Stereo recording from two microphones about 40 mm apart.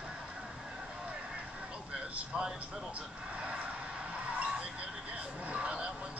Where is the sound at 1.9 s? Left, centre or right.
Centre.